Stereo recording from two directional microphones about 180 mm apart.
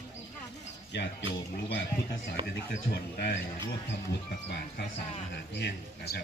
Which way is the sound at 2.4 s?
30° right (ahead or behind).